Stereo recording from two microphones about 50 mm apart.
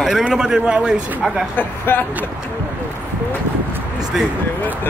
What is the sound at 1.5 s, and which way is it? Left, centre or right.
Speech, left.